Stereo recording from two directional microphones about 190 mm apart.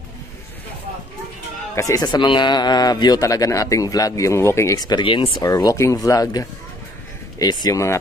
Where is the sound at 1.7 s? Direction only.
15° left (ahead or behind).